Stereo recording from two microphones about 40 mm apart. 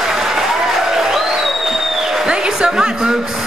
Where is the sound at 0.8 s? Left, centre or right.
Centre.